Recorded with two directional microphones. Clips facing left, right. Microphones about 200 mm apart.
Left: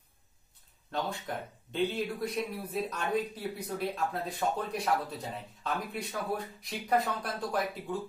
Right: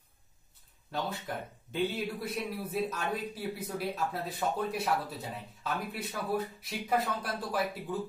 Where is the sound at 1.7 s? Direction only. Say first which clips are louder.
Left 1 dB; 5° right (ahead or behind).